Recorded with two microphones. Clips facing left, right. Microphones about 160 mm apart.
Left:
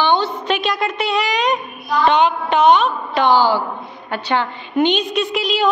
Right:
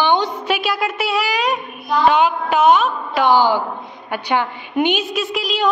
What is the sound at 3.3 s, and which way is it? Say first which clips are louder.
A woman's voice: right 1 dB; 15° right (ahead or behind).